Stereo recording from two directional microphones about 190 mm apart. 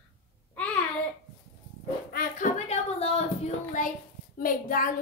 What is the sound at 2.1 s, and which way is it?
Speech, 50° left (ahead or behind).